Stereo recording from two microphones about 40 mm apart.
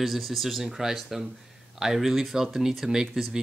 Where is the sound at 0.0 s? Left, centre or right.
Centre.